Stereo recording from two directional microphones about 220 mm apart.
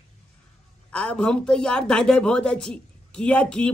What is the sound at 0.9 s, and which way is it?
A man's voice, 5° left (ahead or behind).